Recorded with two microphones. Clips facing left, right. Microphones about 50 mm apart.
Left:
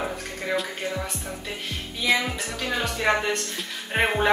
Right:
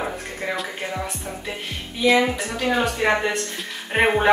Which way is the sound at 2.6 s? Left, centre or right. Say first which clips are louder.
Right 4 dB; right.